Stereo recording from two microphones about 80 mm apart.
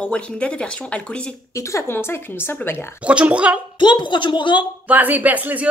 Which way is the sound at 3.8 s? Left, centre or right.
Left.